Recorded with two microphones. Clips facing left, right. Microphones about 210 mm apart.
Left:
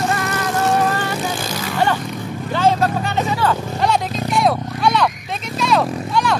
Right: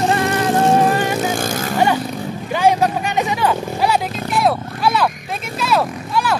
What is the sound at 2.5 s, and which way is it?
Vehicle, 15° right (ahead or behind).